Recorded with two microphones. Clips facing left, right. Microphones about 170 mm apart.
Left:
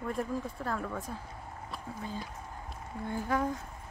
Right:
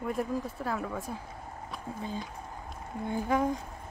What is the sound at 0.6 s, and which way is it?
Speech, 5° right (ahead or behind).